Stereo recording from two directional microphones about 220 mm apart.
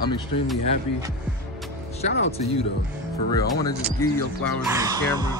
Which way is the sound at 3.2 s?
15° left (ahead or behind).